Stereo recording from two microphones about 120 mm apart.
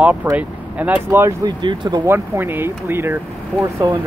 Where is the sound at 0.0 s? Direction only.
15° right (ahead or behind).